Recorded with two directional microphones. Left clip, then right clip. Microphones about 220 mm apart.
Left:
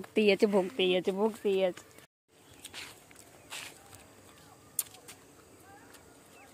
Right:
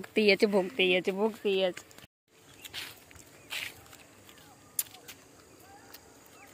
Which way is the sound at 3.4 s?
Centre (ahead or behind).